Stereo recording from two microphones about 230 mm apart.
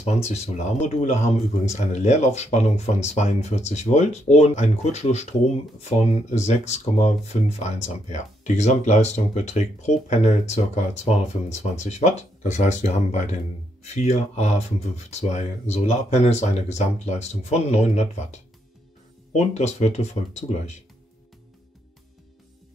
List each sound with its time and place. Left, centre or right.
0.0 s speech: left